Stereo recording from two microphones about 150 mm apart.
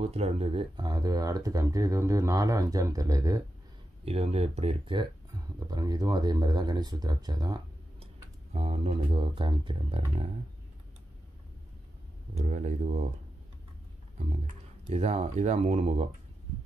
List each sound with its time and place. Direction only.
0.0 s speech: 45° right (ahead or behind); by 3.4 s 25° right (ahead or behind)
4.0 s speech: 40° right (ahead or behind)
4.9 s speech: 25° right (ahead or behind)
8.5 s speech: 40° right (ahead or behind)
12.4 s speech: 55° right (ahead or behind)
14.1 s speech: 50° right (ahead or behind)